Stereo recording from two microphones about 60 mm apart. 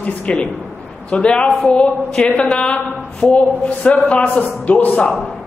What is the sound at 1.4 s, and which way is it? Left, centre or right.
Speech, centre.